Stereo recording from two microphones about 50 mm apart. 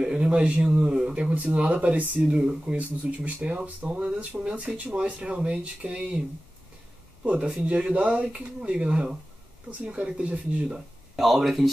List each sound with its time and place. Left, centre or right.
0.0 s speech: centre
2.3 s speech: centre
7.2 s speech: right
11.1 s speech: centre